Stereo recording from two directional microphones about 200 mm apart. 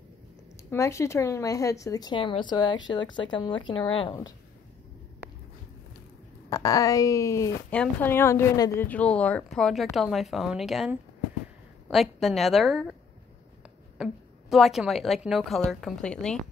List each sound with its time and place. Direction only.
0.6 s speech: 15° left (ahead or behind)
6.5 s a woman's voice: 20° left (ahead or behind); by 12.9 s centre (ahead or behind)
13.9 s a woman's voice: centre (ahead or behind)